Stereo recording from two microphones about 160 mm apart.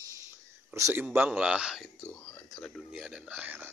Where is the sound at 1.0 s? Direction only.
10° right (ahead or behind).